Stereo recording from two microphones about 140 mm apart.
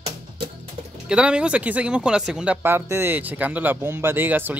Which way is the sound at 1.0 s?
5° right (ahead or behind).